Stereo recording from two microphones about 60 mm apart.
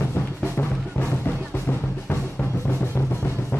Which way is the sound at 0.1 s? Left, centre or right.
Left.